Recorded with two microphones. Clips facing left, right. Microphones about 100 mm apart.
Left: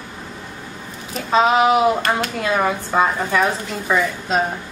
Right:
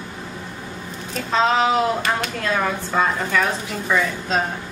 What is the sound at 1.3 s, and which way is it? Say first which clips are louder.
Speech: left 3 dB; 15° left (ahead or behind).